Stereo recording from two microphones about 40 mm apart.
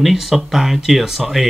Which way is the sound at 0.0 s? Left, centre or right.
Centre.